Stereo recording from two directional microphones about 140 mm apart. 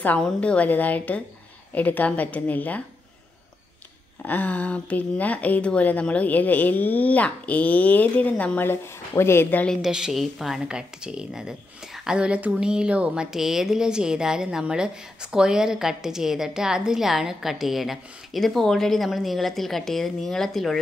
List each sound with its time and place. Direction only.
0.0 s a woman's voice: 10° left (ahead or behind)
4.2 s a woman's voice: 10° left (ahead or behind)
9.8 s a woman's voice: 5° right (ahead or behind)